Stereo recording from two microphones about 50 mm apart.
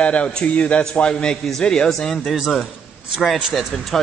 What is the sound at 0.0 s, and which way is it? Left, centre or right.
A man's voice, left.